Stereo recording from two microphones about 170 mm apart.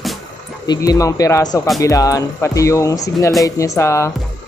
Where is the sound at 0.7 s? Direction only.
20° left (ahead or behind).